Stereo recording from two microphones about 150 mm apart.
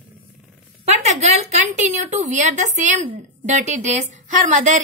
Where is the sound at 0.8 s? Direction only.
50° right (ahead or behind).